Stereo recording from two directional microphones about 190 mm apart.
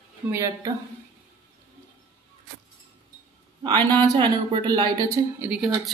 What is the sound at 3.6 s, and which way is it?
Speech, 25° right (ahead or behind).